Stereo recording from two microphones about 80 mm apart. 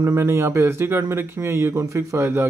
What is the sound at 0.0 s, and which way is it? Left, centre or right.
Speech, right.